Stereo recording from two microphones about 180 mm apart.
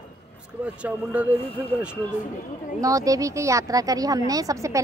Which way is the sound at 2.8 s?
20° right (ahead or behind).